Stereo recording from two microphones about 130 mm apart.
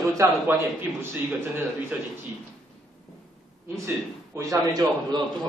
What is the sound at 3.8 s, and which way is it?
A man's voice, 20° right (ahead or behind).